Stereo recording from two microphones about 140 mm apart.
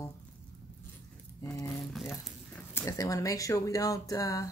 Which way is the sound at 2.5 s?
20° left (ahead or behind).